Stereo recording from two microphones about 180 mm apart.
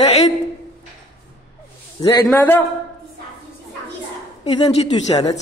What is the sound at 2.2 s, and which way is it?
Speech, 10° left (ahead or behind).